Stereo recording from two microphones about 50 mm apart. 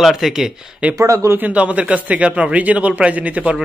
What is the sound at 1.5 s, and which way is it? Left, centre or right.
Speech, right.